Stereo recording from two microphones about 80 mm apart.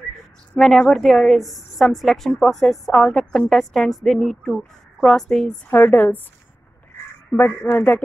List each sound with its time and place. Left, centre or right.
0.6 s a woman's voice: centre
5.7 s speech: left
7.3 s speech: left